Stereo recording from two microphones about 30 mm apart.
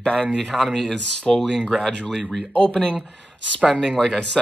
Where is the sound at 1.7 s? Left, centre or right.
Centre.